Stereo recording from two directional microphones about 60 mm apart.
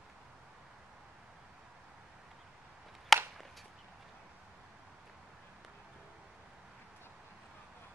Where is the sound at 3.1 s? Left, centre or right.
Centre.